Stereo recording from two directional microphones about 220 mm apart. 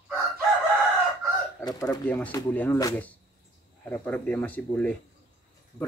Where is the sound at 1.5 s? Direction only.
15° left (ahead or behind).